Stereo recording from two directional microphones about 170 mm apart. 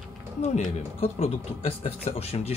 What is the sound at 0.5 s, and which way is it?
Speech, 40° left (ahead or behind).